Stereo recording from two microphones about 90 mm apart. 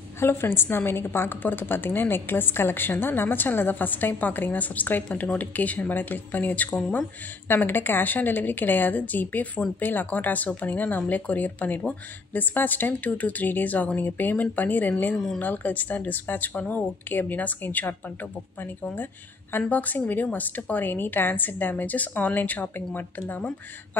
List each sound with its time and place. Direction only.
0.2 s a woman's voice: 25° left (ahead or behind)
15.1 s speech: 5° left (ahead or behind)
15.4 s a woman's voice: 20° left (ahead or behind)
19.5 s a woman's voice: 20° left (ahead or behind)